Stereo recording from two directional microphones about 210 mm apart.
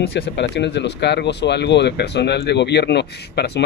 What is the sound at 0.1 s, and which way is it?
Speech, 55° left (ahead or behind).